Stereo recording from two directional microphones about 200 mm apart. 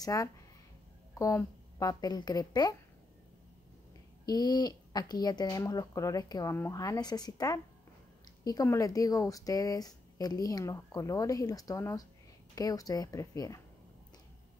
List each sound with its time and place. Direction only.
0.0 s speech: 15° left (ahead or behind)
4.3 s speech: 20° left (ahead or behind)